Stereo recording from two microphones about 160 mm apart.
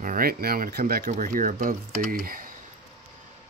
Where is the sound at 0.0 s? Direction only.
65° right (ahead or behind).